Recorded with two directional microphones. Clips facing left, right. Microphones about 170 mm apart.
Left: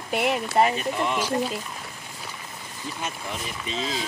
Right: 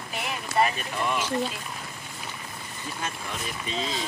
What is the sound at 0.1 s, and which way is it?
Speech, 65° left (ahead or behind).